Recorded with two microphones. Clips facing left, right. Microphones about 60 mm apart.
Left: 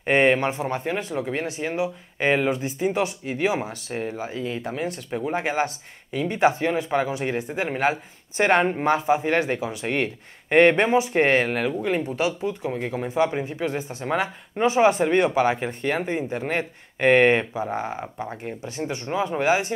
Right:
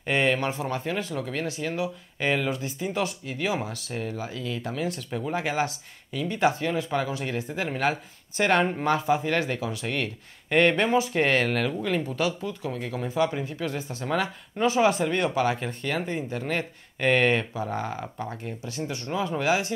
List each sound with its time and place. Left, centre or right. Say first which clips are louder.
0.0 s speech: left 5 dB; left
11.4 s speech: left 2 dB; centre
11.9 s speech: left 3 dB; left
18.4 s speech: left 3 dB; left